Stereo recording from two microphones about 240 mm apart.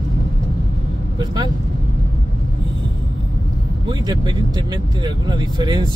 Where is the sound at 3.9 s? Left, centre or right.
Centre.